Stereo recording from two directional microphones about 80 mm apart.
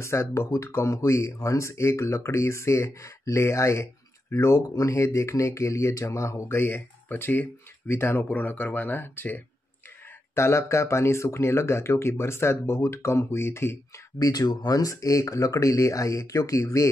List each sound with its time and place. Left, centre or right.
0.0 s speech: left
14.1 s speech: left